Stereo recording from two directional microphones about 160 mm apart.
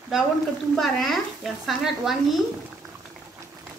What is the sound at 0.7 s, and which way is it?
Speech, centre (ahead or behind).